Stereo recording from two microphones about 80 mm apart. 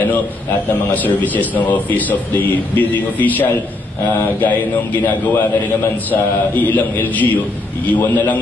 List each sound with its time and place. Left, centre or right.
0.9 s a man's voice: left
5.0 s a man's voice: centre